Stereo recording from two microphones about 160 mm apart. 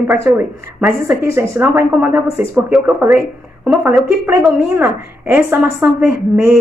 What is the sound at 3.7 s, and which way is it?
Speech, centre (ahead or behind).